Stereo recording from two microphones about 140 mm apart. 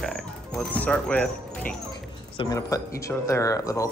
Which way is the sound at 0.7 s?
10° left (ahead or behind).